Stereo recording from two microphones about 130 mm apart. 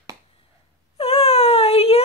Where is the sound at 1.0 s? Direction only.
50° left (ahead or behind).